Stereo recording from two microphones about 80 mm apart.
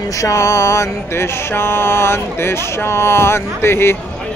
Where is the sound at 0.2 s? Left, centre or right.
Left.